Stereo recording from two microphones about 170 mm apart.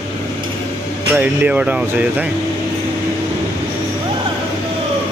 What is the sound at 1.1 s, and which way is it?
Speech, 10° right (ahead or behind).